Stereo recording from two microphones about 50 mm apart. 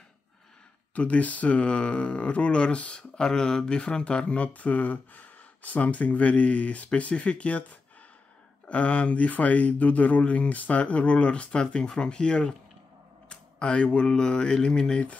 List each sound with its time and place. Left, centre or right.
0.9 s speech: left
8.6 s speech: left